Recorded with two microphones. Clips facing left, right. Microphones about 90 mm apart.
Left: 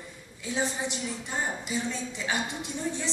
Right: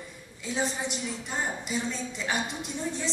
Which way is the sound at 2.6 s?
15° left (ahead or behind).